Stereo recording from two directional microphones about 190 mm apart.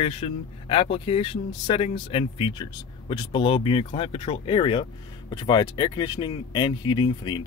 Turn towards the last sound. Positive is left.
turn(degrees=25)  # may be behind; listen again after turning